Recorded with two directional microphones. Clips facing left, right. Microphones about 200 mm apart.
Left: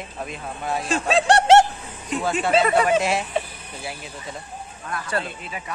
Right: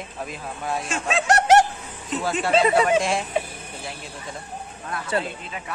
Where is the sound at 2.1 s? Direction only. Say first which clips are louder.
Left 1 dB; centre (ahead or behind).